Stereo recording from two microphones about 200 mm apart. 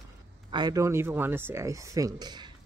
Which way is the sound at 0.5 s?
20° right (ahead or behind).